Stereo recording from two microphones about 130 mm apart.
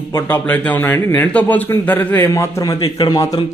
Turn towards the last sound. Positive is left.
turn(degrees=30)  # may be behind; listen again after turning